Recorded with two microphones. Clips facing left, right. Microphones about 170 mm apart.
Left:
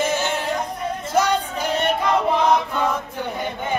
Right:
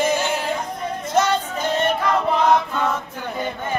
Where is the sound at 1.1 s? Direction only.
10° left (ahead or behind).